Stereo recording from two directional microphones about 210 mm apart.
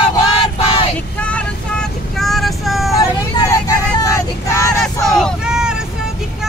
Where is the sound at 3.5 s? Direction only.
15° left (ahead or behind).